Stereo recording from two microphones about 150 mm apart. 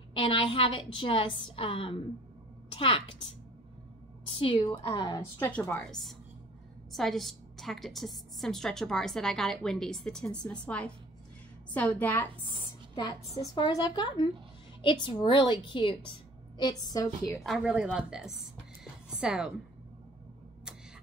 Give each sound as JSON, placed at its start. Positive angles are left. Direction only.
{"t": 0.1, "sound": "a woman's voice", "side_deg": 35}
{"t": 4.3, "sound": "a woman's voice", "side_deg": 35}
{"t": 5.4, "sound": "a woman's voice", "side_deg": 10}
{"t": 13.6, "sound": "a woman's voice", "side_deg": 30}
{"t": 17.4, "sound": "a woman's voice", "side_deg": 0}